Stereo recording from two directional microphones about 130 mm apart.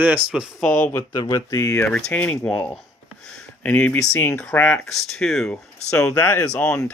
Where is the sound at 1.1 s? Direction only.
30° left (ahead or behind).